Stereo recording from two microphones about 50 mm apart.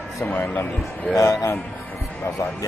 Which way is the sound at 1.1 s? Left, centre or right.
Left.